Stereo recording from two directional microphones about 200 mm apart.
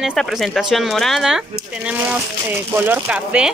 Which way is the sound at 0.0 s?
Centre (ahead or behind).